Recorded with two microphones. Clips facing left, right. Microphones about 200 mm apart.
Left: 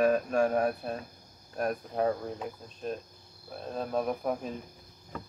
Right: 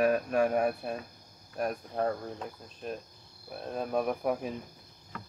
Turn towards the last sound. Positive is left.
turn(degrees=-10)  # may be behind; listen again after turning